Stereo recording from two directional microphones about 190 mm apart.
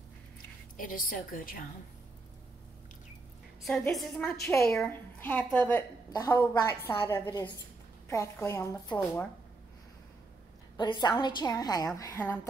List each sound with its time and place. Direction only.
0.7 s a woman's voice: 45° left (ahead or behind)
3.6 s a woman's voice: 5° left (ahead or behind)
10.8 s a woman's voice: 25° left (ahead or behind)